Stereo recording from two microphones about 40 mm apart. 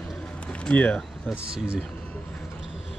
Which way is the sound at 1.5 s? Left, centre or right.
Right.